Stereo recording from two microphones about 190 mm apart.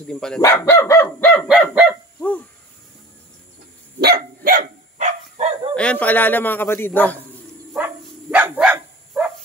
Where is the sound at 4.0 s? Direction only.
55° right (ahead or behind).